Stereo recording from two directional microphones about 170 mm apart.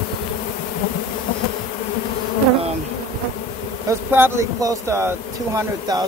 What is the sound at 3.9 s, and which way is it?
Speech, 15° right (ahead or behind).